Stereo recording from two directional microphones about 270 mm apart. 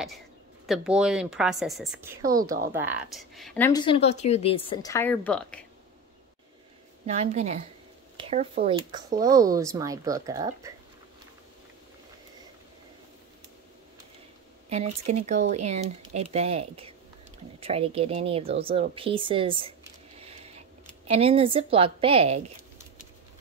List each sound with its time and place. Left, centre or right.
0.7 s speech: centre
7.1 s speech: right
8.2 s a sound: right
8.6 s speech: centre
14.7 s speech: right
20.2 s a sound: right
21.1 s speech: right